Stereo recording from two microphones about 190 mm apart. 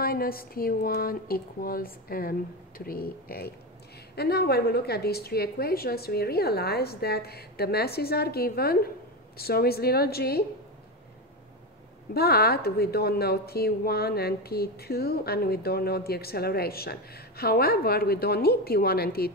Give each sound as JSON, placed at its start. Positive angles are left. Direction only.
{"t": 0.0, "sound": "a sound", "side_deg": 50}
{"t": 4.1, "sound": "a woman's voice", "side_deg": 55}
{"t": 12.1, "sound": "a woman's voice", "side_deg": 55}